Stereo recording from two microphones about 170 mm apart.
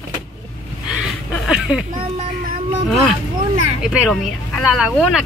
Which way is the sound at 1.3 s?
Centre (ahead or behind).